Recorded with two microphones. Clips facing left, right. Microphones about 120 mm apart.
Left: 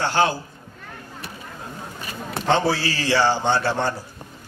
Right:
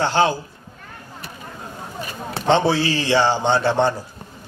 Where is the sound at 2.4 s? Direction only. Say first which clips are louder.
Right 3 dB; 20° right (ahead or behind).